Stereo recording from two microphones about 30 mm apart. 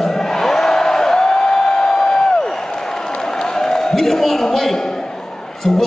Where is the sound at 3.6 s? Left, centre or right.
Centre.